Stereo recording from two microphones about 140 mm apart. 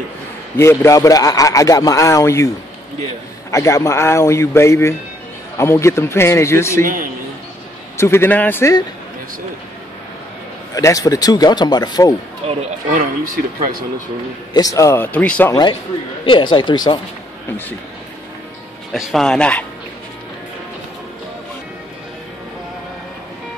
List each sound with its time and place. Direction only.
0.6 s a man's voice: 20° left (ahead or behind)
3.5 s a man's voice: 20° left (ahead or behind)
6.8 s speech: 75° right (ahead or behind)
8.0 s speech: 15° left (ahead or behind)
10.7 s a man's voice: 25° left (ahead or behind)
12.9 s speech: 75° right (ahead or behind)
14.5 s speech: 25° left (ahead or behind); by 15.5 s 10° left (ahead or behind)
16.3 s speech: 35° left (ahead or behind)
18.9 s speech: centre (ahead or behind)